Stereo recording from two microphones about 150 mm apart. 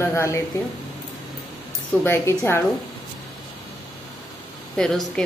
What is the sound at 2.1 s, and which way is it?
Speech, 15° left (ahead or behind).